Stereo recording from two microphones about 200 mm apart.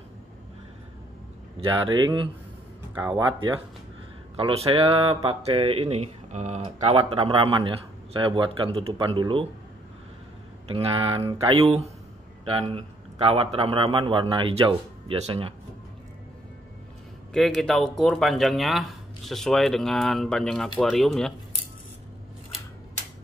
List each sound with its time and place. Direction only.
1.7 s speech: 20° right (ahead or behind)
10.7 s speech: 25° right (ahead or behind)
17.3 s speech: centre (ahead or behind)